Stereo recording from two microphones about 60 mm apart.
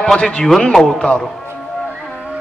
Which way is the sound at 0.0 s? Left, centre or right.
Centre.